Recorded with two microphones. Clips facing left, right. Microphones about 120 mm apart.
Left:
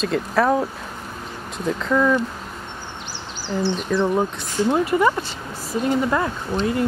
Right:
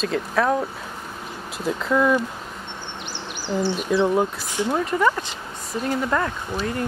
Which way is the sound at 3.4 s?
10° right (ahead or behind).